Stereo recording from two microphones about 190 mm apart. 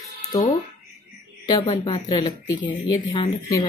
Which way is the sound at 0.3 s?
20° left (ahead or behind).